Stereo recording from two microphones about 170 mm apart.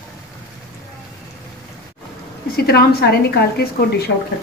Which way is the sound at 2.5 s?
65° left (ahead or behind).